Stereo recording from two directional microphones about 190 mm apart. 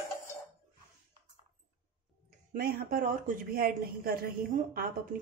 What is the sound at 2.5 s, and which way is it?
Speech, 50° right (ahead or behind).